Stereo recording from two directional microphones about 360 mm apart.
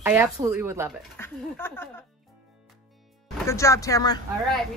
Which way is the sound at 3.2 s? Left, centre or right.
Centre.